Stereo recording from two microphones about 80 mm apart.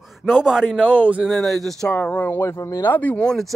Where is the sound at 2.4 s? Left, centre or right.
Left.